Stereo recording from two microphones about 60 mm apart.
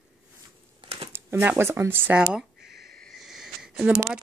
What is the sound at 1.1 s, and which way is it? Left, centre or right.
Speech, right.